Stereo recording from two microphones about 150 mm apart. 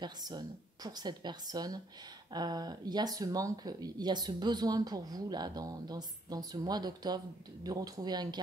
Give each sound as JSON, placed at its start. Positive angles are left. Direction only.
{"t": 0.0, "sound": "speech", "side_deg": -25}